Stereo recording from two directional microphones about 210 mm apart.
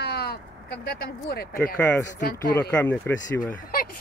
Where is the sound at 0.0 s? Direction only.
50° left (ahead or behind).